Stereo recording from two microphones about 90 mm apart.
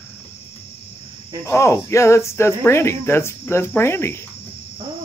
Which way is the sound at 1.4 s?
35° left (ahead or behind).